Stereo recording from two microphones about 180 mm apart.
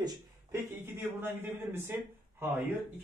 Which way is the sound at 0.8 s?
10° right (ahead or behind).